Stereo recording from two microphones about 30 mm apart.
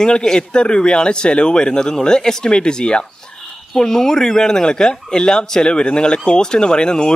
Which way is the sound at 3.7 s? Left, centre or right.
Centre.